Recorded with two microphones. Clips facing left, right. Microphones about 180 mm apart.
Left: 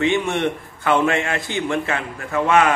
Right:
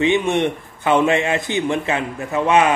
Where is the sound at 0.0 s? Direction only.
20° right (ahead or behind).